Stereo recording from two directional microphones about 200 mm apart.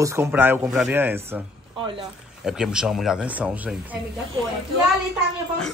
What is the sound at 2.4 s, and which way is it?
Speech, centre (ahead or behind).